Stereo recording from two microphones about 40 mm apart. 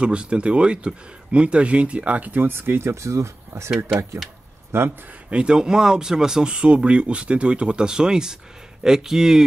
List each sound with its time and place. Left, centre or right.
0.0 s speech: right
2.3 s speech: right
3.7 s speech: centre
4.7 s speech: right
5.3 s speech: right